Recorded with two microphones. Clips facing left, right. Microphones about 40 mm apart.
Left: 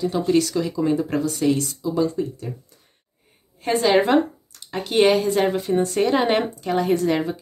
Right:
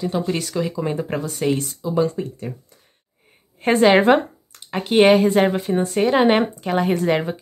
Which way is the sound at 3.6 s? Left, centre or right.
Right.